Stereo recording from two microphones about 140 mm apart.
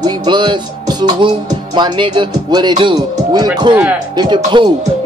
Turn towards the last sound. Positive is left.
turn(degrees=-35)  # may be behind; listen again after turning